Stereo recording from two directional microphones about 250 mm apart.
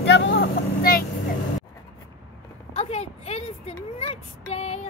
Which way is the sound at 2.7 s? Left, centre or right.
Left.